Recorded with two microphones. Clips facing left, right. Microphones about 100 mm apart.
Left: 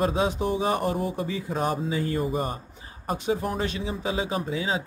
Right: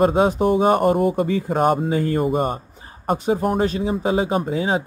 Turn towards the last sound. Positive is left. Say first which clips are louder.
# right 7 dB
turn(degrees=-45)  # may be behind; listen again after turning